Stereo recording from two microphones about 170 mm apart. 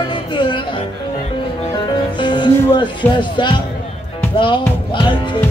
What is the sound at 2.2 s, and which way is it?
Speech, 25° left (ahead or behind).